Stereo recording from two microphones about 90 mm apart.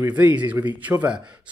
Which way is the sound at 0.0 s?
15° right (ahead or behind).